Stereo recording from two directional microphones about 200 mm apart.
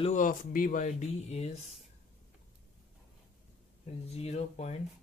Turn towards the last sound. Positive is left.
turn(degrees=30)  # may be behind; listen again after turning